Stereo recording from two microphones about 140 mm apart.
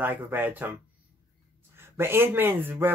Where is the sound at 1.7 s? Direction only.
15° right (ahead or behind).